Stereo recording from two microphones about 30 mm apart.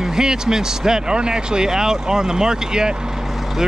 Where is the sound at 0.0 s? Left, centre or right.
Centre.